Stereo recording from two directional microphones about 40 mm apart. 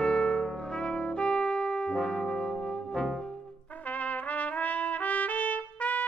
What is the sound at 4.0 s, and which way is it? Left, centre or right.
Trumpet, left.